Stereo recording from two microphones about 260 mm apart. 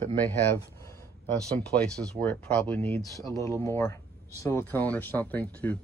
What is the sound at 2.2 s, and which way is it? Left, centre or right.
Speech, centre.